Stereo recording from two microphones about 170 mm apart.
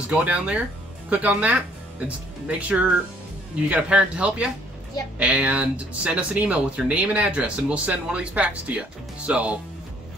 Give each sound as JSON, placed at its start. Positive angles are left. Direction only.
{"t": 0.1, "sound": "speech", "side_deg": -5}